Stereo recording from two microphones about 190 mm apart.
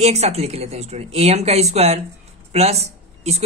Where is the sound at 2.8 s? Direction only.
35° right (ahead or behind).